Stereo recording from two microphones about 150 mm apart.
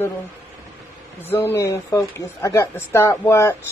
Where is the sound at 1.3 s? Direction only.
15° left (ahead or behind).